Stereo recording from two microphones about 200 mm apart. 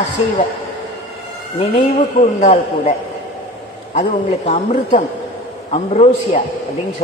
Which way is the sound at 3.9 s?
35° left (ahead or behind).